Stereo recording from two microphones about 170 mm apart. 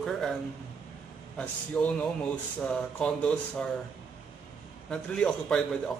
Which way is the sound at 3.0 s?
5° left (ahead or behind).